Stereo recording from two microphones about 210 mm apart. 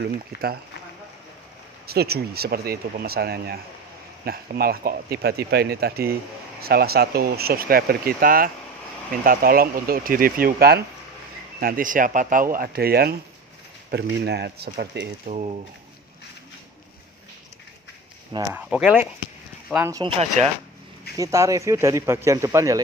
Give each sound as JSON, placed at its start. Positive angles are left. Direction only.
{"t": 0.0, "sound": "speech", "side_deg": -45}
{"t": 1.9, "sound": "speech", "side_deg": -50}
{"t": 15.2, "sound": "speech", "side_deg": -30}
{"t": 18.3, "sound": "speech", "side_deg": -20}
{"t": 18.7, "sound": "speech", "side_deg": -5}
{"t": 20.0, "sound": "speech", "side_deg": -30}
{"t": 21.2, "sound": "speech", "side_deg": -15}